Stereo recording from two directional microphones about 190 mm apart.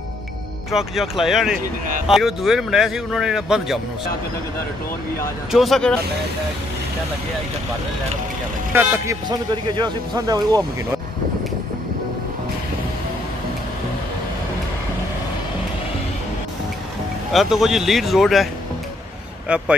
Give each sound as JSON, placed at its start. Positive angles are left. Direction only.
{"t": 0.7, "sound": "speech", "side_deg": 0}
{"t": 5.5, "sound": "speech", "side_deg": 0}
{"t": 8.7, "sound": "speech", "side_deg": -15}
{"t": 17.3, "sound": "speech", "side_deg": 0}
{"t": 19.5, "sound": "speech", "side_deg": -5}